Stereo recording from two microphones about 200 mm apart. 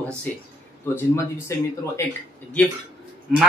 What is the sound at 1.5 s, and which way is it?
Speech, 15° left (ahead or behind).